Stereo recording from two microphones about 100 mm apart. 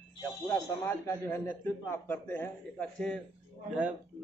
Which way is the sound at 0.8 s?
25° left (ahead or behind).